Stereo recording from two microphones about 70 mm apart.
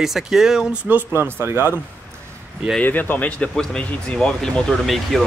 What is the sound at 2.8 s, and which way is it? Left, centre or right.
Speech, left.